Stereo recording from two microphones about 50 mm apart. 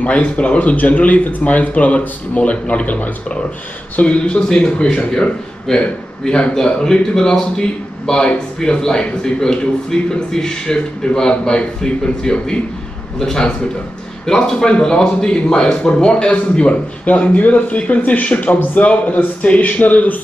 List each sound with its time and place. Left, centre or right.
0.0 s a man's voice: left